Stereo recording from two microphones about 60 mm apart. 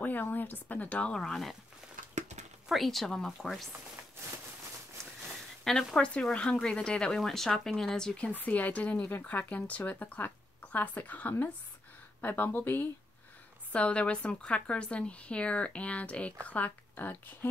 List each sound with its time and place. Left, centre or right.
0.0 s a woman's voice: left
1.1 s speech: centre
2.7 s speech: centre
5.6 s speech: centre
8.4 s a woman's voice: left
13.7 s a woman's voice: left